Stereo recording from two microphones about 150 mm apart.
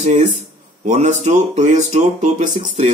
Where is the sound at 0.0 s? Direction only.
50° right (ahead or behind).